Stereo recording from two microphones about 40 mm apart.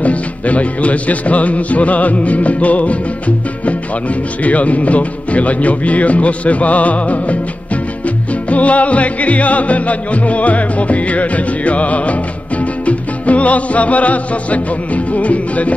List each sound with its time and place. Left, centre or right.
0.0 s music: left